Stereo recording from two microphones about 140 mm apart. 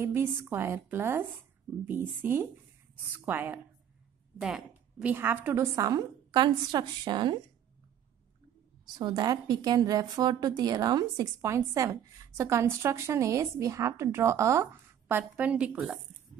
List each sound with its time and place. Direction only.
0.0 s a woman's voice: 15° right (ahead or behind)
5.1 s a woman's voice: 15° right (ahead or behind); by 7.3 s 35° right (ahead or behind)
8.8 s a woman's voice: 30° right (ahead or behind); by 16.0 s 10° right (ahead or behind)